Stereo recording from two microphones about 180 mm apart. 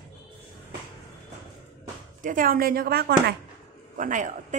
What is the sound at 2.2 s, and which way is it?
A woman's voice, 50° right (ahead or behind).